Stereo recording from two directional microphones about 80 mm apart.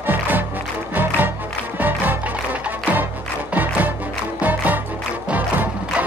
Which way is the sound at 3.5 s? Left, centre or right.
Right.